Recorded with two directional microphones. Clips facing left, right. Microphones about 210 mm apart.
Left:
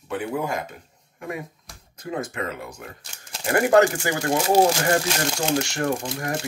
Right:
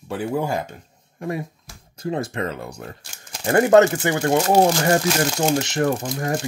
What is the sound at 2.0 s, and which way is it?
Speech, 30° right (ahead or behind).